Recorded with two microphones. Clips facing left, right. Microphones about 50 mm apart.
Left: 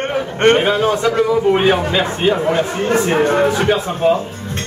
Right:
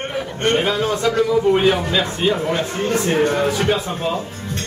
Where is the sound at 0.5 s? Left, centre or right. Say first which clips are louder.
Left 4 dB; left.